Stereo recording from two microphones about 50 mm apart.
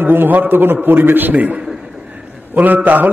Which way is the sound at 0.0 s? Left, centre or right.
Right.